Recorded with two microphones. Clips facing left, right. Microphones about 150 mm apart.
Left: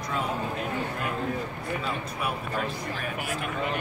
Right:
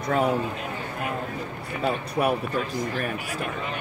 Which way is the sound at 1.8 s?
55° right (ahead or behind).